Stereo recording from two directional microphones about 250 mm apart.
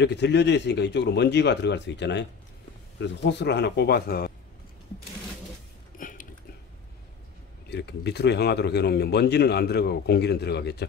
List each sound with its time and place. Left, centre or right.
0.0 s a man's voice: left
5.9 s a sound: left
7.7 s speech: left